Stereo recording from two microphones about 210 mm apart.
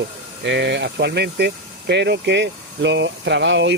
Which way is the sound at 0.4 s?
55° right (ahead or behind).